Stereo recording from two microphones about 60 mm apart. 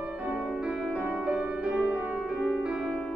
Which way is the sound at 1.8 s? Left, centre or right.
Right.